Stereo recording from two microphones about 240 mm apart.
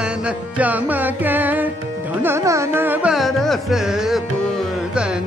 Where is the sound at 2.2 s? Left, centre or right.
Centre.